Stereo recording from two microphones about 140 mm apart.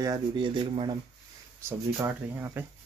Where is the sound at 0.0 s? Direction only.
30° right (ahead or behind).